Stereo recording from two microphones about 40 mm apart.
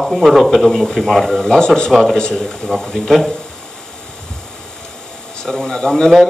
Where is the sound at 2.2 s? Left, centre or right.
Centre.